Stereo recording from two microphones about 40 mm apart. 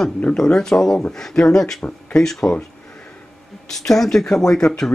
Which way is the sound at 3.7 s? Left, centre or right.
Centre.